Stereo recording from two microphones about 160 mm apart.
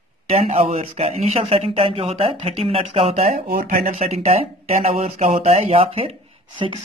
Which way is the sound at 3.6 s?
55° right (ahead or behind).